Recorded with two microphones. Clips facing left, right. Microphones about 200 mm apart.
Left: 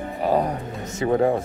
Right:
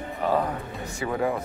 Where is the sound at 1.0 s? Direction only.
35° left (ahead or behind).